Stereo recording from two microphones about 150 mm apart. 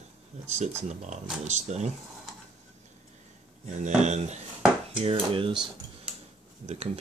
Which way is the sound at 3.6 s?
55° right (ahead or behind).